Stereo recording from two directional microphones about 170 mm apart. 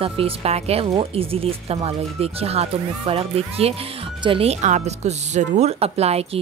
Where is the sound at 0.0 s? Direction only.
35° right (ahead or behind).